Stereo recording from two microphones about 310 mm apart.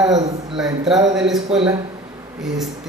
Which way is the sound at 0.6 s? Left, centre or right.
Centre.